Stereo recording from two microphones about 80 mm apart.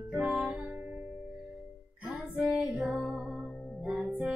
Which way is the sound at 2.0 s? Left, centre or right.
Centre.